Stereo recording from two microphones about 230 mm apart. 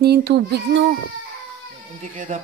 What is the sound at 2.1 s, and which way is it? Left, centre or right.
Speech, right.